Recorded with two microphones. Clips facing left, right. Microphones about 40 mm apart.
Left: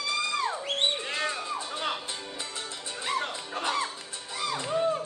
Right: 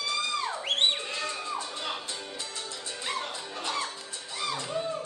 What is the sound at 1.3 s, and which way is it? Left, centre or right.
Music, left.